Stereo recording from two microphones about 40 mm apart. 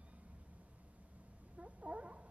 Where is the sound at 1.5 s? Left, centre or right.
Right.